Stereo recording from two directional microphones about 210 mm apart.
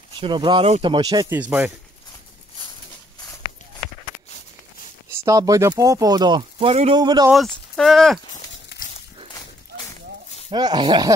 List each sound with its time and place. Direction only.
0.2 s speech: 20° right (ahead or behind)
5.2 s speech: 15° right (ahead or behind)
7.3 s speech: centre (ahead or behind)
8.7 s a sound: 55° left (ahead or behind)
10.5 s speech: 20° right (ahead or behind)